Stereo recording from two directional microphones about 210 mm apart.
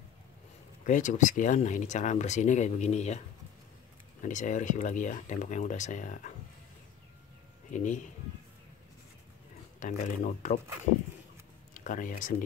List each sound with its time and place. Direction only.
0.8 s speech: 35° left (ahead or behind)
4.2 s speech: 35° left (ahead or behind)
7.7 s speech: 35° left (ahead or behind)
9.8 s speech: 35° left (ahead or behind)
11.7 s speech: 40° left (ahead or behind)